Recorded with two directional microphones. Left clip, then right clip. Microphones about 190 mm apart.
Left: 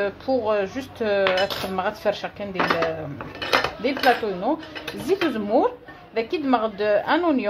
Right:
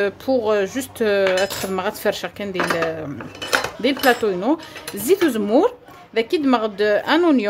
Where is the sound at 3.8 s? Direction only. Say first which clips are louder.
Right 5 dB; 40° right (ahead or behind).